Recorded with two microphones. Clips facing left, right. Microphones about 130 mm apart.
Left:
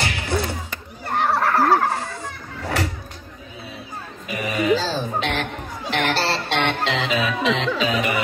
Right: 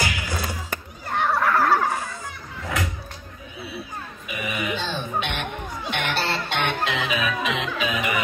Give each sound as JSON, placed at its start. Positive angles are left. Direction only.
{"t": 0.0, "sound": "a sound", "side_deg": 25}
{"t": 1.2, "sound": "fowl", "side_deg": 35}
{"t": 4.3, "sound": "music", "side_deg": 40}